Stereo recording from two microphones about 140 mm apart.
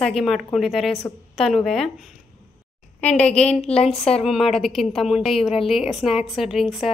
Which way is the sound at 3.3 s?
50° left (ahead or behind).